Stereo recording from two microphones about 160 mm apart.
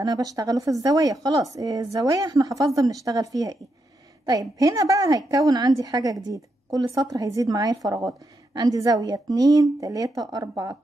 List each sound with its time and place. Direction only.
0.0 s a woman's voice: 25° right (ahead or behind)